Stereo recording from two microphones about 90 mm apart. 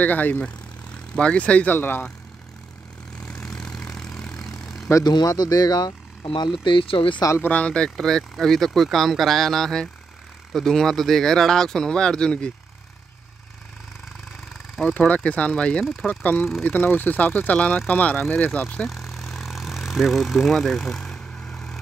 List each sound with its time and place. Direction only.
0.0 s speech: 20° left (ahead or behind)
3.2 s vehicle: 10° left (ahead or behind)
5.0 s speech: 45° left (ahead or behind)
6.2 s speech: 65° left (ahead or behind); by 7.2 s 85° left
7.4 s speech: 15° left (ahead or behind)
15.0 s speech: 15° left (ahead or behind)
16.6 s speech: 20° left (ahead or behind)
18.6 s vehicle: 5° left (ahead or behind)